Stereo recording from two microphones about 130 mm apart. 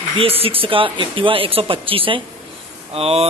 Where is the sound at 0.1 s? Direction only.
45° right (ahead or behind).